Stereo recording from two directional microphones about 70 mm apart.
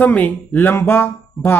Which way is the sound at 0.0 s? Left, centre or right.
Left.